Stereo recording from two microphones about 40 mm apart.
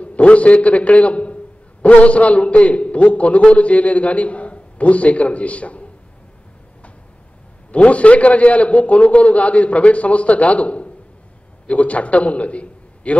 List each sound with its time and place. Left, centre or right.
0.0 s a man's voice: left
7.7 s a man's voice: left